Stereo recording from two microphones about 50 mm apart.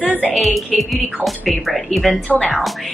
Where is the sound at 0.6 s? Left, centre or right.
Centre.